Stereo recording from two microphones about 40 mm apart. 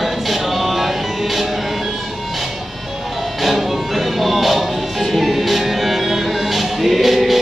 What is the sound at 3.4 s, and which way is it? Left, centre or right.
Music, centre.